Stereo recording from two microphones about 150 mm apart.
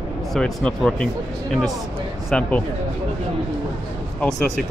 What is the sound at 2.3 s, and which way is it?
Speech, 5° left (ahead or behind).